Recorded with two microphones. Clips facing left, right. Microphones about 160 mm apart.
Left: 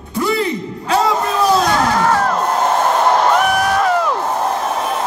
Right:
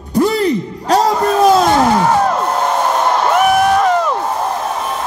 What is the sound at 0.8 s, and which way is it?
Speech, 40° right (ahead or behind).